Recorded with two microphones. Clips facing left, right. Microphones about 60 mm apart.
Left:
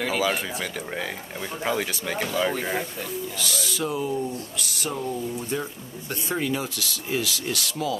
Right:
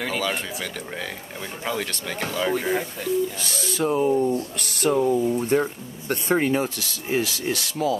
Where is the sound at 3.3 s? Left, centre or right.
Right.